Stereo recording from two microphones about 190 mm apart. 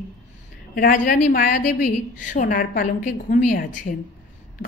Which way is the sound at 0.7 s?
45° left (ahead or behind).